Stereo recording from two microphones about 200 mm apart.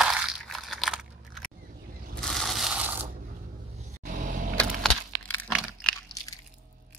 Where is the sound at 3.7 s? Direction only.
40° right (ahead or behind).